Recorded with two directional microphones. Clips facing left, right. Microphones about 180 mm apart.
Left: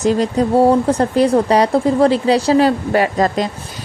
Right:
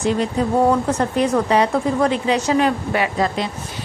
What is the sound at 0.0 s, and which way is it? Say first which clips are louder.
Speech: left 4 dB; 40° left (ahead or behind).